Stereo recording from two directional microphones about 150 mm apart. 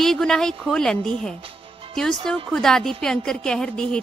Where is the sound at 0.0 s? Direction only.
5° left (ahead or behind).